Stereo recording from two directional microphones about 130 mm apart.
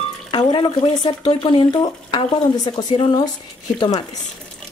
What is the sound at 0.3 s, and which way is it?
Speech, 35° left (ahead or behind).